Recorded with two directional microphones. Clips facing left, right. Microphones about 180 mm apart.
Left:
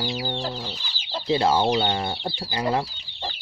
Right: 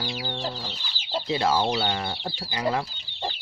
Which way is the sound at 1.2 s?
30° left (ahead or behind).